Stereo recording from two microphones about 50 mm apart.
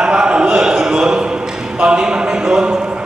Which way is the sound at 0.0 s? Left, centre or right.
Centre.